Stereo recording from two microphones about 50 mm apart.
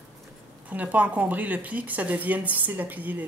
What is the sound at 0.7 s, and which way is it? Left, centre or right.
Speech, right.